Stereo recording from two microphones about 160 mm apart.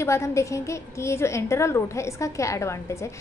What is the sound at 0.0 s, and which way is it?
A woman's voice, 15° left (ahead or behind).